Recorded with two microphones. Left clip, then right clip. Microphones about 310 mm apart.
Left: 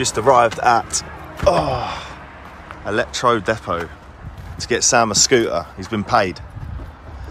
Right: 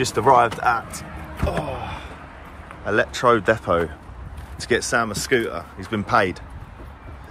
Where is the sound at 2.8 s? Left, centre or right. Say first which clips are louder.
Even; centre.